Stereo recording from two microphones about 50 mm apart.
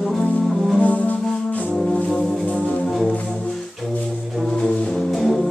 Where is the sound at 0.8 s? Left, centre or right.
Left.